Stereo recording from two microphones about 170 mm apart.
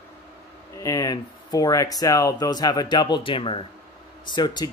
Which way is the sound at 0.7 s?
20° left (ahead or behind).